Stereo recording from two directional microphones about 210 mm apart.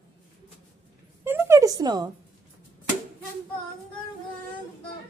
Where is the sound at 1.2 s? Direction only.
10° right (ahead or behind).